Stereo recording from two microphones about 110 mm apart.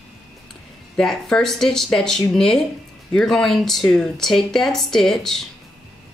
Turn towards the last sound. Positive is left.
turn(degrees=5)  # may be behind; listen again after turning